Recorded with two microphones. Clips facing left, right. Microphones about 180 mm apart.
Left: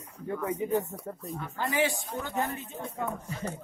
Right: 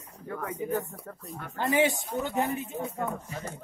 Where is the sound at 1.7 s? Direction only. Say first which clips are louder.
Right 4 dB; 20° right (ahead or behind).